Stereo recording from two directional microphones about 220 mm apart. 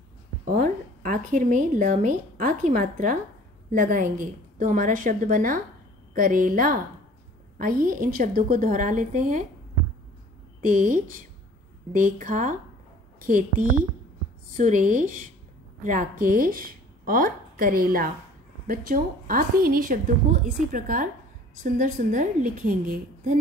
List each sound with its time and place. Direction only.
0.6 s a woman's voice: 35° right (ahead or behind)
10.7 s a woman's voice: 35° right (ahead or behind)